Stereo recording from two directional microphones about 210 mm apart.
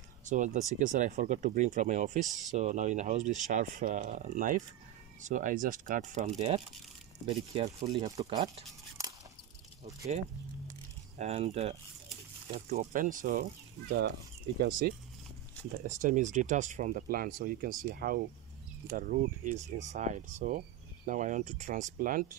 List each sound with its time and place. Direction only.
0.2 s speech: 35° right (ahead or behind); by 8.6 s 20° right (ahead or behind)
10.7 s music: 30° right (ahead or behind)
12.4 s speech: 30° right (ahead or behind)